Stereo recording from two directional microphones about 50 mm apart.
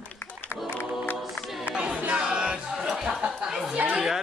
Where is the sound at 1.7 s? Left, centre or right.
Left.